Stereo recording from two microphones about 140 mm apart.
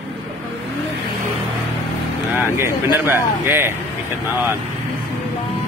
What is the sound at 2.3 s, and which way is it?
Speech, 15° right (ahead or behind).